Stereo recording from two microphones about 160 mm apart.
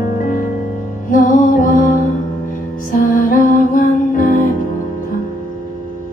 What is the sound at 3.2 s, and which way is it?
Music, 60° left (ahead or behind).